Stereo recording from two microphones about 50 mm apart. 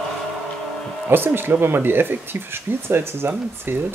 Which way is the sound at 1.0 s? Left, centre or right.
Right.